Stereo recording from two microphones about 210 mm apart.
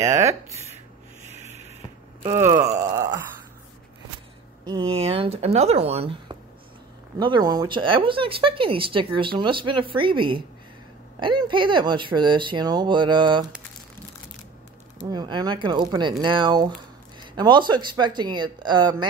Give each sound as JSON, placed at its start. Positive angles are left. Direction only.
{"t": 0.0, "sound": "speech", "side_deg": -15}
{"t": 1.3, "sound": "a sound", "side_deg": -35}
{"t": 2.2, "sound": "speech", "side_deg": -15}
{"t": 4.6, "sound": "speech", "side_deg": -25}
{"t": 15.0, "sound": "speech", "side_deg": -20}